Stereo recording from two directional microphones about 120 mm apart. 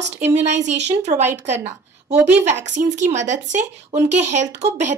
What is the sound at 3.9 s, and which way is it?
Speech, 75° right (ahead or behind).